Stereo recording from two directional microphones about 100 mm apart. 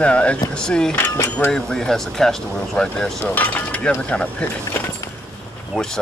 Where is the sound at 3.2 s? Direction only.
15° left (ahead or behind).